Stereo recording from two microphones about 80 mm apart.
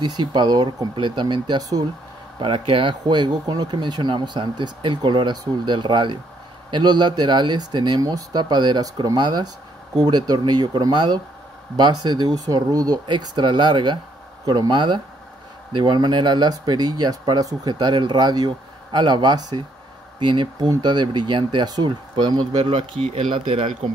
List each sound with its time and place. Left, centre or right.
0.0 s speech: right
1.6 s speech: right
2.3 s speech: right
6.7 s speech: right
8.0 s speech: right
13.0 s speech: right
14.4 s speech: right
20.2 s speech: right